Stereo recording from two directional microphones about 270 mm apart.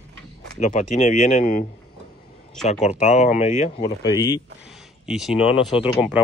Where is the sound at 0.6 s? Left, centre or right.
Left.